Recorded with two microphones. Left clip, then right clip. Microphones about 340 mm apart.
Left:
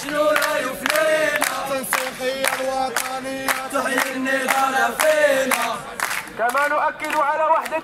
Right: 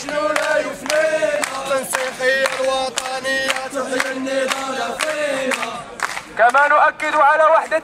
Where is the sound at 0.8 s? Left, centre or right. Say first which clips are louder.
Even; left.